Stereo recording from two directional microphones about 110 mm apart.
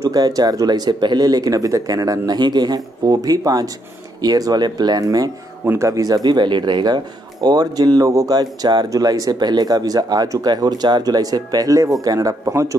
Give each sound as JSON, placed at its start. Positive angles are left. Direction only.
{"t": 0.0, "sound": "speech", "side_deg": -35}